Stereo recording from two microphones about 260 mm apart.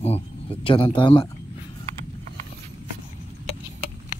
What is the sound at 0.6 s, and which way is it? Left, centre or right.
Speech, centre.